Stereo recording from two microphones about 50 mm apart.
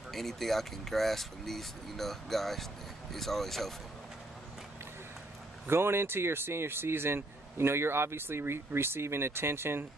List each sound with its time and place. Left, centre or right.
0.1 s speech: centre
5.7 s speech: right